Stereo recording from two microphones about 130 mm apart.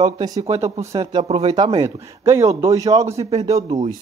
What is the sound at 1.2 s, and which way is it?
Speech, 55° right (ahead or behind).